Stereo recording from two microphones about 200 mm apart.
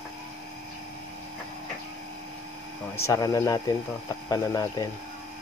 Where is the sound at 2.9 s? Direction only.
15° left (ahead or behind).